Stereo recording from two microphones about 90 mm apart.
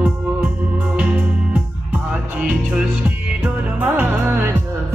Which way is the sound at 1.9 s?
15° right (ahead or behind).